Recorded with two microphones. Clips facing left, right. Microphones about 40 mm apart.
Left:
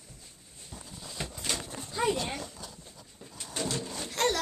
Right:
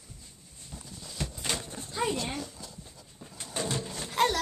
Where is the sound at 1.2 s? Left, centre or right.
Left.